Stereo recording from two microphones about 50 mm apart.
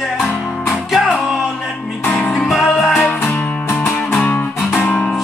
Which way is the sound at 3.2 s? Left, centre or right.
Left.